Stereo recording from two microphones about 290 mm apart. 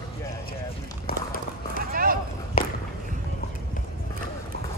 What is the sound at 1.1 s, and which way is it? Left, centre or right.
Run, left.